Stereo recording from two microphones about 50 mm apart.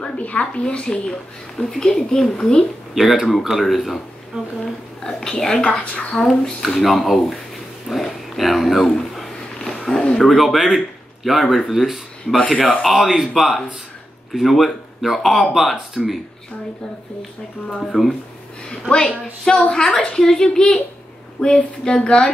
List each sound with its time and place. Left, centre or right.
0.0 s a woman's voice: left; by 2.6 s centre
2.9 s speech: centre
4.6 s speech: centre
5.6 s a woman's voice: left
6.1 s a woman's voice: centre
9.6 s roaring cats: centre
10.1 s speech: centre
12.4 s a woman's voice: left
12.8 s speech: centre
17.9 s a woman's voice: centre